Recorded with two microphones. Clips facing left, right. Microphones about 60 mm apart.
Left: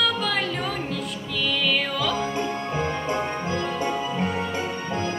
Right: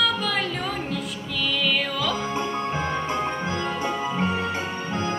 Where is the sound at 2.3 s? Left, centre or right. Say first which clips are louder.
Even; right.